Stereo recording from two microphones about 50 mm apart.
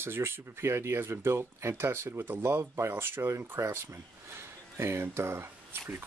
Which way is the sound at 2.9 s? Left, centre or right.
Right.